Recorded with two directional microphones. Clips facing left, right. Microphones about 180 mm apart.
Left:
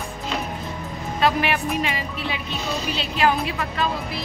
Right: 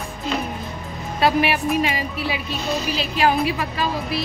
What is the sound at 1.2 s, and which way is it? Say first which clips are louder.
A woman's voice: right 3 dB; 10° right (ahead or behind).